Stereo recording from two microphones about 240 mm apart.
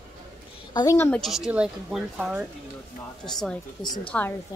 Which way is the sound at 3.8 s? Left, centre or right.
Centre.